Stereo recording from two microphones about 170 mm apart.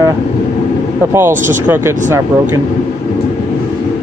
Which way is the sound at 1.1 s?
15° right (ahead or behind).